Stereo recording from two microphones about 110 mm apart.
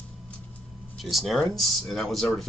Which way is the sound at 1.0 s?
Centre (ahead or behind).